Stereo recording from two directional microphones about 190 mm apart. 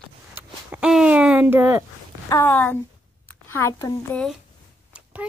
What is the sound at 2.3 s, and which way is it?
A woman's voice, 10° left (ahead or behind).